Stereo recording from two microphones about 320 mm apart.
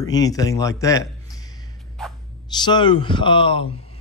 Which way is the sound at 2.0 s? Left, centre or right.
Centre.